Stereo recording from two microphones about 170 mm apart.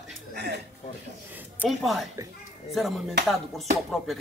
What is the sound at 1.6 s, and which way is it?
Speech, centre (ahead or behind).